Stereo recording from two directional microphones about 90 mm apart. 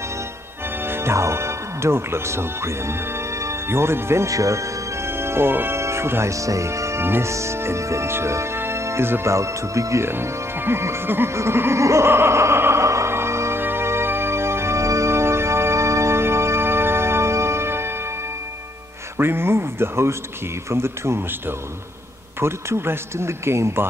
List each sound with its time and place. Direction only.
0.8 s music: 25° right (ahead or behind)
19.1 s speech: 25° right (ahead or behind)